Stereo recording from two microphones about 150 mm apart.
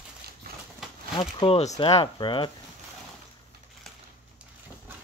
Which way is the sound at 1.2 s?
35° left (ahead or behind).